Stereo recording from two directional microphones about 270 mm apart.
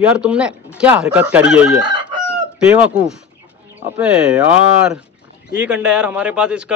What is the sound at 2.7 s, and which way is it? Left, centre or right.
A man's voice, centre.